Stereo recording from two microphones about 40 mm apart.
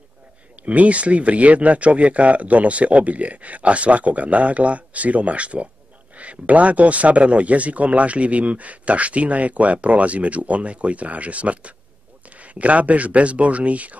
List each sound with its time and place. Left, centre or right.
0.7 s speech: right